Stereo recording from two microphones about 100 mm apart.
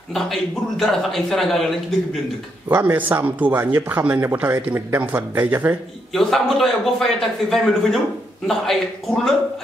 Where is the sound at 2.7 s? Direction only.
15° right (ahead or behind).